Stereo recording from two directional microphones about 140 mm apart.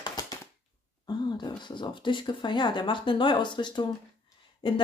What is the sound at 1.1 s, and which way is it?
Speech, 30° left (ahead or behind).